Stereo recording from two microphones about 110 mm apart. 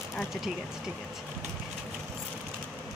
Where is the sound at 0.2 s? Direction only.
5° right (ahead or behind).